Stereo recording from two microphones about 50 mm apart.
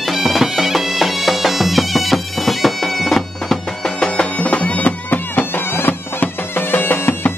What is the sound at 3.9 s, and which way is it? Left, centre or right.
Music, centre.